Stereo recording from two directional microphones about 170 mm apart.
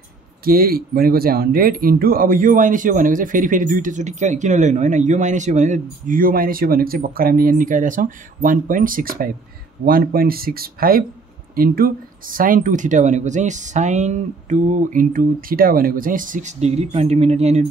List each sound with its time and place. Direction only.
0.4 s speech: 60° right (ahead or behind); by 17.6 s 40° right (ahead or behind)